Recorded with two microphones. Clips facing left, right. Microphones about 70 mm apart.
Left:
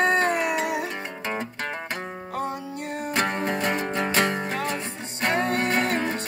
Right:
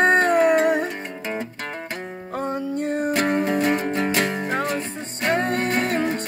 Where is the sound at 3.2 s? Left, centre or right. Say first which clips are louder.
Right 5 dB; centre.